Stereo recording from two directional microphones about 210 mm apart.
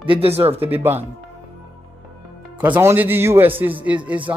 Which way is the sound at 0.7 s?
10° right (ahead or behind).